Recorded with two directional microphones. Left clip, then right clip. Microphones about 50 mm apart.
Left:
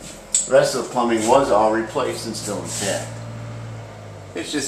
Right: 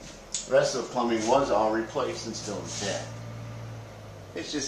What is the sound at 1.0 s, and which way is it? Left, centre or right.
Speech, centre.